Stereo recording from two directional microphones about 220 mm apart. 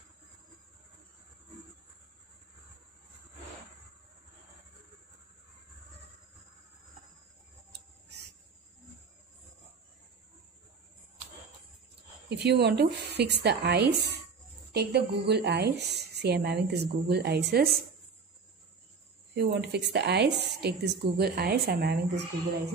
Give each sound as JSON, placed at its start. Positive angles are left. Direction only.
{"t": 12.3, "sound": "a woman's voice", "side_deg": -50}
{"t": 19.3, "sound": "a woman's voice", "side_deg": -50}